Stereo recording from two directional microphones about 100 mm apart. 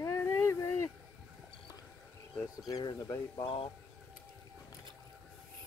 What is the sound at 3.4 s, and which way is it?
Speech, 60° left (ahead or behind).